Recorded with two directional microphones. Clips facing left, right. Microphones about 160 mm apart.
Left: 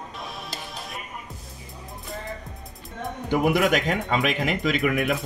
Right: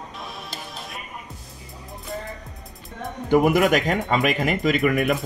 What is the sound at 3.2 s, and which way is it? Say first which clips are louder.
A man's voice: right 4 dB; 45° right (ahead or behind).